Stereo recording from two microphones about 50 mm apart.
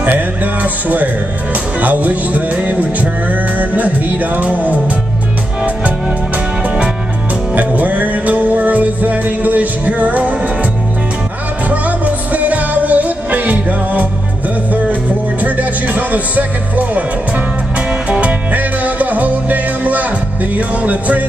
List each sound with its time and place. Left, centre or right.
0.0 s speech: right
7.5 s music: right
12.3 s music: right
15.4 s music: right
18.1 s music: right
20.5 s speech: right